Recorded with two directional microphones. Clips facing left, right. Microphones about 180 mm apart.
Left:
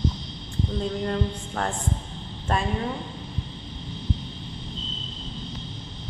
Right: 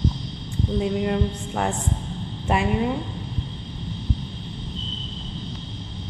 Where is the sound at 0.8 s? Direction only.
10° right (ahead or behind).